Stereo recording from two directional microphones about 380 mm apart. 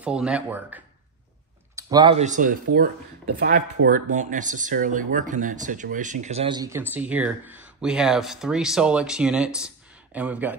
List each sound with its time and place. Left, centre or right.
0.0 s speech: centre